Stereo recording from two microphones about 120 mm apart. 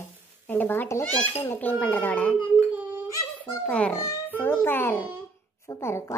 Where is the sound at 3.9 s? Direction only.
25° left (ahead or behind).